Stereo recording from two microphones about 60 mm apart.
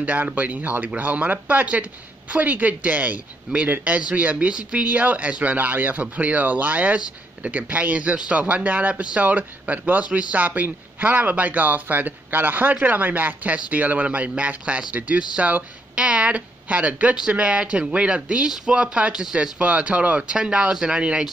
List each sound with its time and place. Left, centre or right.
0.0 s speech: right